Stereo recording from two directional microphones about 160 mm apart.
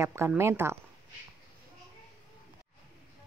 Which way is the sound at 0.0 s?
15° right (ahead or behind).